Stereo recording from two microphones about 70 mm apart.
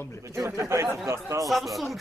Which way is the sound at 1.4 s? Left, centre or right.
Centre.